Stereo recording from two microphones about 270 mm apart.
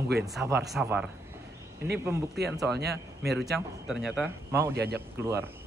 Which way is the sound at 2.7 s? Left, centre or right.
Right.